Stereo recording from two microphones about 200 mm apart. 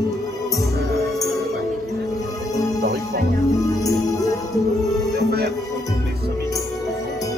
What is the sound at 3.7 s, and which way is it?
Music, 20° left (ahead or behind).